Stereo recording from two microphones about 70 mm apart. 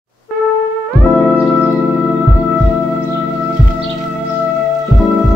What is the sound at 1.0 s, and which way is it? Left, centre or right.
Music, centre.